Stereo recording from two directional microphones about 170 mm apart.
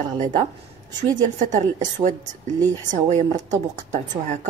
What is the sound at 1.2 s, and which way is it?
A woman's voice, 45° right (ahead or behind).